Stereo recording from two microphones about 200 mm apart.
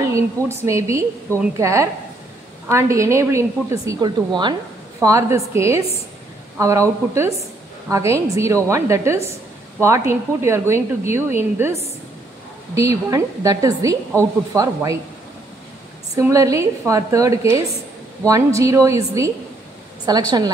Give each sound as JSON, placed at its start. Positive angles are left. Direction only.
{"t": 0.0, "sound": "a woman's voice", "side_deg": -15}
{"t": 16.2, "sound": "a woman's voice", "side_deg": -15}